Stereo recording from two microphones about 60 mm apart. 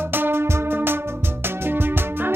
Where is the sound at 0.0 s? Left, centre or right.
Right.